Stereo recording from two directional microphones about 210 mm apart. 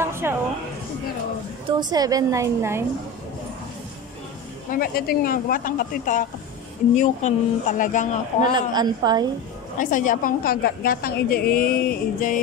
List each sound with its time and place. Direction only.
0.0 s a sound: 10° right (ahead or behind)
1.7 s a woman's voice: 20° right (ahead or behind)
4.6 s speech: 45° left (ahead or behind)
8.5 s a woman's voice: 20° right (ahead or behind)
9.8 s a woman's voice: 40° left (ahead or behind)